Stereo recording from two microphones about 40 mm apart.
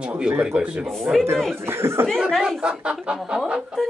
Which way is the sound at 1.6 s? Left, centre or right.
Right.